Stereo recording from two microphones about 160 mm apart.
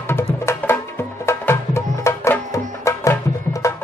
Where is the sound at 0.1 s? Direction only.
15° left (ahead or behind).